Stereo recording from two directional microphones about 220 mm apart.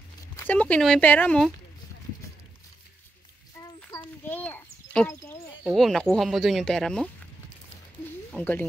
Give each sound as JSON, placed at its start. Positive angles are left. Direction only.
{"t": 0.4, "sound": "speech", "side_deg": 5}
{"t": 3.9, "sound": "a sound", "side_deg": 10}
{"t": 4.9, "sound": "speech", "side_deg": 5}
{"t": 8.3, "sound": "speech", "side_deg": 5}